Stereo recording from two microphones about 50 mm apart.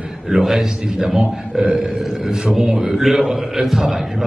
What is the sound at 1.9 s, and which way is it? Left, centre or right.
A man's voice, centre.